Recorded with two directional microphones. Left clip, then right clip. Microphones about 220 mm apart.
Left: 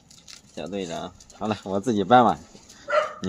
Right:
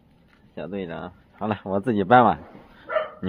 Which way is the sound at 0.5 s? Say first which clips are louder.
Left 1 dB; centre (ahead or behind).